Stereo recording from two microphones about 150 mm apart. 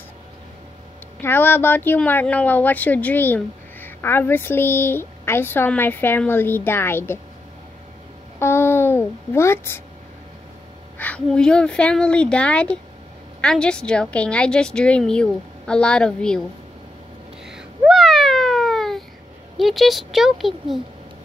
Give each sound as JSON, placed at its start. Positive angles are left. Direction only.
{"t": 1.2, "sound": "speech", "side_deg": 15}
{"t": 8.4, "sound": "a sound", "side_deg": 15}
{"t": 11.0, "sound": "a woman's voice", "side_deg": 10}
{"t": 17.5, "sound": "cat", "side_deg": -5}
{"t": 19.5, "sound": "a woman's voice", "side_deg": 0}